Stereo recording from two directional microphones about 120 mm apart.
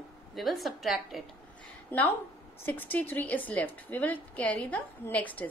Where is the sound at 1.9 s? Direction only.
20° left (ahead or behind).